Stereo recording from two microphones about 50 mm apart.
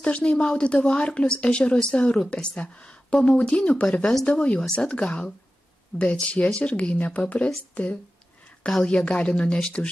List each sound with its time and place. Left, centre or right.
0.0 s speech: left
4.0 s speech: centre
4.3 s speech: left